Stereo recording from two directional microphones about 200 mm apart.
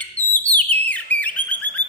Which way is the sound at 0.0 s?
5° left (ahead or behind).